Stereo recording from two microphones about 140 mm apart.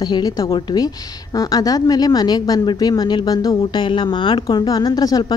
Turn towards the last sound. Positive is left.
turn(degrees=30)  # may be behind; listen again after turning